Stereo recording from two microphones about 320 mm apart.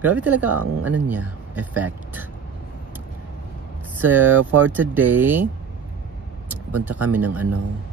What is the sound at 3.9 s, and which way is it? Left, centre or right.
Speech, centre.